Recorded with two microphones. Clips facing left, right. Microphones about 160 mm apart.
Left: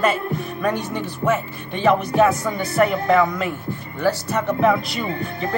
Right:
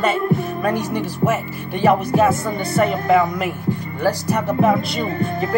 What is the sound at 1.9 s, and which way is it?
Music, 5° right (ahead or behind).